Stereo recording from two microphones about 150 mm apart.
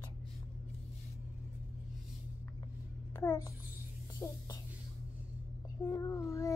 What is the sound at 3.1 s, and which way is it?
A child's voice, 20° left (ahead or behind).